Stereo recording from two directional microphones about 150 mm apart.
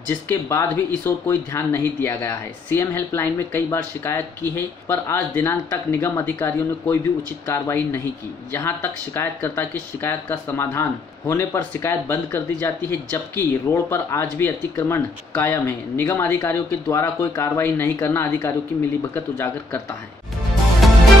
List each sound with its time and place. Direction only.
0.1 s speech: 15° left (ahead or behind)
20.8 s music: centre (ahead or behind)